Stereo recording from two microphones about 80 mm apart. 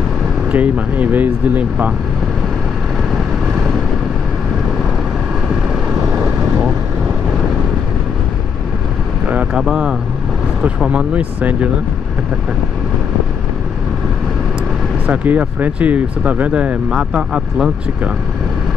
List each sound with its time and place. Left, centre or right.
0.5 s speech: centre
9.2 s vehicle: centre
9.6 s speech: centre
15.0 s speech: right